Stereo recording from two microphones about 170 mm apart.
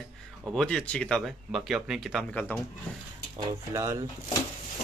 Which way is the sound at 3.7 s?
20° right (ahead or behind).